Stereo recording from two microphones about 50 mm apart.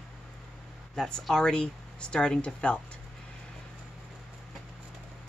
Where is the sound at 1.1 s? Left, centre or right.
Centre.